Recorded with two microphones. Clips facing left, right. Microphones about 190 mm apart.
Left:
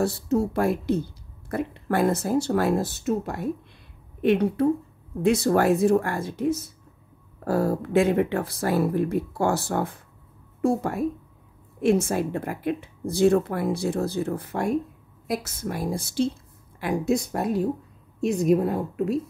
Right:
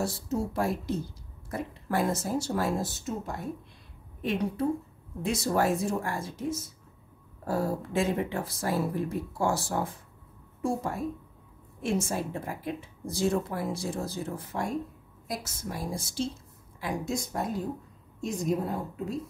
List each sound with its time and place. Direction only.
0.0 s a woman's voice: 60° left (ahead or behind)